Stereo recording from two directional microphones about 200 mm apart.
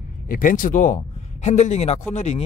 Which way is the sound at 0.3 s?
45° left (ahead or behind).